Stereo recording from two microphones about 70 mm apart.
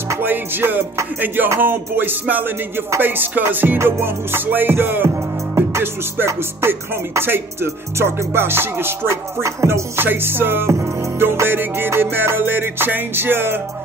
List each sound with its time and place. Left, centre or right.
0.2 s music: right